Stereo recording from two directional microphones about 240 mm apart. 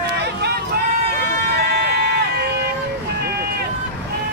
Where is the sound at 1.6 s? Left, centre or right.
Right.